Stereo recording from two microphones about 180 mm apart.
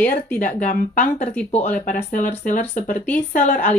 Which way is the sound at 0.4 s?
45° left (ahead or behind).